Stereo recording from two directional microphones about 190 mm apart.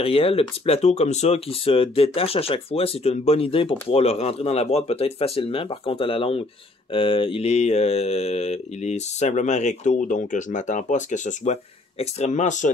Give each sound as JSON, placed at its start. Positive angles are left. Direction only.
{"t": 0.0, "sound": "mantra", "side_deg": 30}